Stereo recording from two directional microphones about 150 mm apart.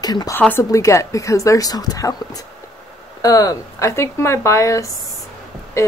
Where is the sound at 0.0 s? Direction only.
25° left (ahead or behind).